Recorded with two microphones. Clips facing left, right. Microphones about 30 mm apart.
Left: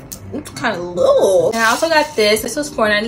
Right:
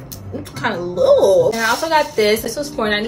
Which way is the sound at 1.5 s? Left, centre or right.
Left.